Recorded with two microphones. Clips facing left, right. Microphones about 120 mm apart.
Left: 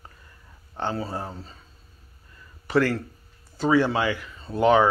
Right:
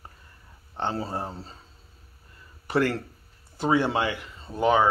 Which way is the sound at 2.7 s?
20° right (ahead or behind).